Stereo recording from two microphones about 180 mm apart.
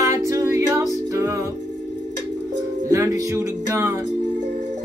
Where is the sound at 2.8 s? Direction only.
15° right (ahead or behind).